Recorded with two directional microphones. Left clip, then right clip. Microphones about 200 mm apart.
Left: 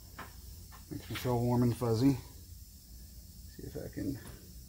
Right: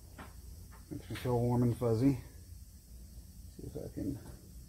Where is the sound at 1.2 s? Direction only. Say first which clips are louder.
Left 1 dB; 30° left (ahead or behind).